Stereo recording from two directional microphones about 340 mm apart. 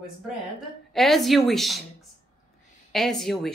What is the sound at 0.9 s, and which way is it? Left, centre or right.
Speech, centre.